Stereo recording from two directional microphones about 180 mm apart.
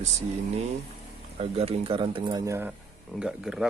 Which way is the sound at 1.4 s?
30° right (ahead or behind).